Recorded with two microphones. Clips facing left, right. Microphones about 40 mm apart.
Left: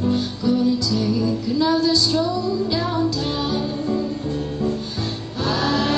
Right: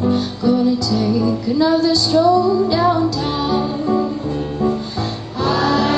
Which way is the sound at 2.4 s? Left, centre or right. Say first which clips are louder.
Right 7 dB; centre.